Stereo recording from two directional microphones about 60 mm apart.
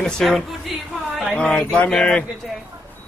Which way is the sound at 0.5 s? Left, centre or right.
Centre.